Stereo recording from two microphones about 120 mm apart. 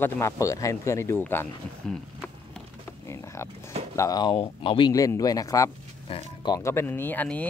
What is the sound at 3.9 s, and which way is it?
Speech, 30° left (ahead or behind).